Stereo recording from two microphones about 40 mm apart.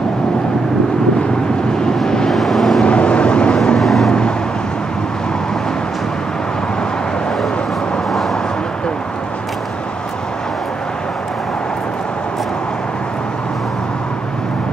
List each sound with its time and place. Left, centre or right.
2.0 s vehicle: centre
2.3 s vehicle: centre
2.8 s vehicle: left
3.8 s vehicle: centre